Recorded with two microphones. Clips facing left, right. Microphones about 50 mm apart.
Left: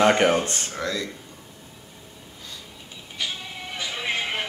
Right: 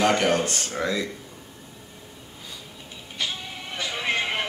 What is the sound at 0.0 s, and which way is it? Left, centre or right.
Speech, left.